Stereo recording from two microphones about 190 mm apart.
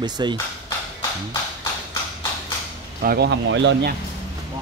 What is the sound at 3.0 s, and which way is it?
Speech, 55° right (ahead or behind).